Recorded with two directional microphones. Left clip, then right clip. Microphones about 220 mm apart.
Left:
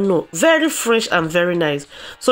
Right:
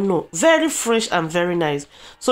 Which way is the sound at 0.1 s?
10° left (ahead or behind).